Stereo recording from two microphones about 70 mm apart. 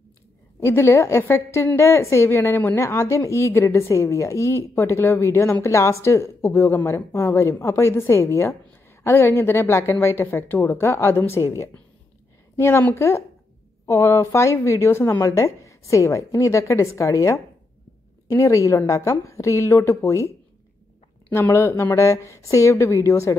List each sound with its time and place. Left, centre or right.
0.6 s a woman's voice: left
13.8 s a woman's voice: left
15.1 s a woman's voice: left
21.3 s a woman's voice: left